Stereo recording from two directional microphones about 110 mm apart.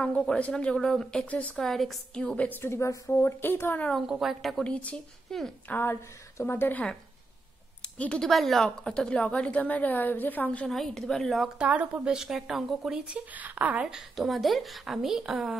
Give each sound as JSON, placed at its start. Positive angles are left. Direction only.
{"t": 0.0, "sound": "speech", "side_deg": 10}
{"t": 3.9, "sound": "a woman's voice", "side_deg": 0}
{"t": 5.7, "sound": "speech", "side_deg": 20}
{"t": 10.7, "sound": "a woman's voice", "side_deg": 0}